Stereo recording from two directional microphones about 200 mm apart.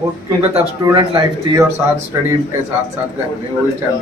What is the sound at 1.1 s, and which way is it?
Speech, 20° right (ahead or behind).